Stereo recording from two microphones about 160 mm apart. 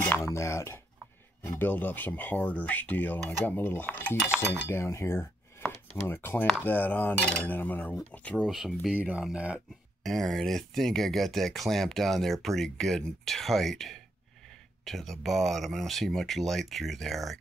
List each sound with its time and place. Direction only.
0.1 s cutlery: 15° left (ahead or behind)
4.6 s speech: 15° left (ahead or behind)
6.4 s cutlery: 10° left (ahead or behind)
9.1 s speech: 5° right (ahead or behind)